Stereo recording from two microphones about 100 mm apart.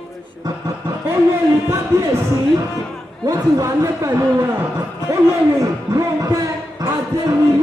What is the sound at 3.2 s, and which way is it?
A man's voice, 35° right (ahead or behind).